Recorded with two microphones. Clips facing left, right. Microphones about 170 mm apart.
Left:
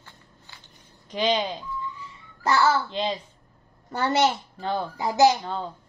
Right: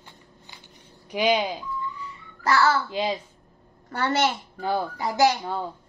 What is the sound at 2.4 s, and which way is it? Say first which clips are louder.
Speech: even; 20° left (ahead or behind).